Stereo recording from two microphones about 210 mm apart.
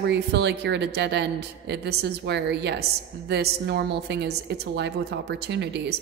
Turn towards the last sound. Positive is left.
turn(degrees=-55)  # may be behind; listen again after turning